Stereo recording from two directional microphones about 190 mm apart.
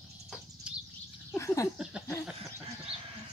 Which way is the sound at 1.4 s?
15° left (ahead or behind).